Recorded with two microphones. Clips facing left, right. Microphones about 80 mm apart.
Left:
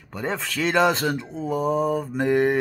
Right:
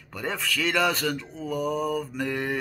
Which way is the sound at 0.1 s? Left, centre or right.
Left.